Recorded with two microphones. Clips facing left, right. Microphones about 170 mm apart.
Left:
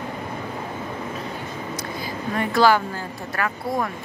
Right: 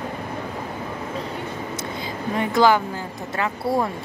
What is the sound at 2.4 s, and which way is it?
Speech, 20° right (ahead or behind).